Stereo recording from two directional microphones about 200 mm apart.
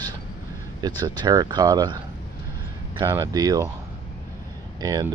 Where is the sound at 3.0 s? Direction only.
15° right (ahead or behind).